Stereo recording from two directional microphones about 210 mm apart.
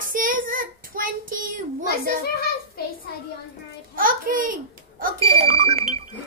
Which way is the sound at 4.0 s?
40° right (ahead or behind).